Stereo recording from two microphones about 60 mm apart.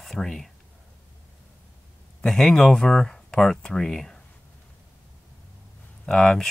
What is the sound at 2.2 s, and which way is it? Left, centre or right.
Speech, centre.